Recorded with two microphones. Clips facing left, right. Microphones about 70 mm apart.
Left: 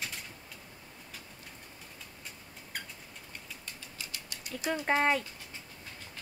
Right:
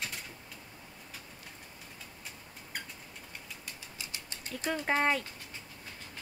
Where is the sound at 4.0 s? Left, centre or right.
Right.